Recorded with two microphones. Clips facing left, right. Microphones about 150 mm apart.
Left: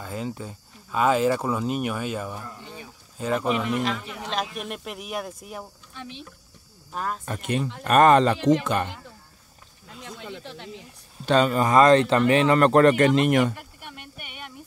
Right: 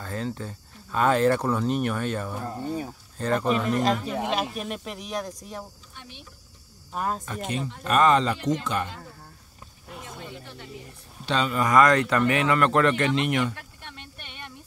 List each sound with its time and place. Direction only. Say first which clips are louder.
0.0 s speech: even; 10° left (ahead or behind)
2.4 s speech: right 10 dB; 40° right (ahead or behind)
3.2 s speech: even; 5° left (ahead or behind)
3.8 s speech: right 4 dB; 40° right (ahead or behind)
4.6 s speech: right 1 dB; centre (ahead or behind)
5.9 s speech: left 8 dB; 90° left
7.2 s speech: left 3 dB; 60° left (ahead or behind)
8.4 s speech: left 6 dB; 90° left
10.0 s snake: left 5 dB; 85° left
11.2 s speech: left 6 dB; 45° left (ahead or behind)
11.6 s speech: left 1 dB; 30° left (ahead or behind); by 13.5 s 45° left (ahead or behind)
13.6 s a sound: left 2 dB; 10° left (ahead or behind)